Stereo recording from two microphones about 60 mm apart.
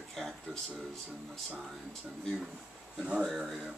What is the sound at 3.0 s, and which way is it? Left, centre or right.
Speech, centre.